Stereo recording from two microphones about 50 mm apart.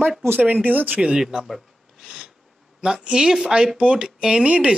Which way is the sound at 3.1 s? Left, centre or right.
Centre.